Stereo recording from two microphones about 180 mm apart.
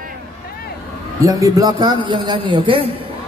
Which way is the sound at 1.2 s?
20° right (ahead or behind).